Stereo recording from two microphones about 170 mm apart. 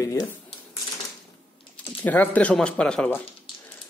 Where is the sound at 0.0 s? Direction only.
20° left (ahead or behind).